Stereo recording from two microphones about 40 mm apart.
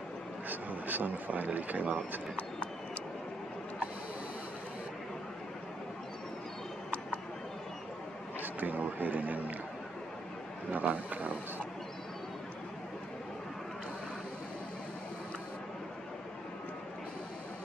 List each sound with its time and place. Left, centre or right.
0.5 s speech: right
2.3 s a sound: left
8.4 s a man's voice: right
10.7 s speech: right